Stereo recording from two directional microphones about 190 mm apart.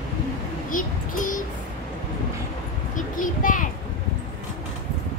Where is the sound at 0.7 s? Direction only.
45° left (ahead or behind).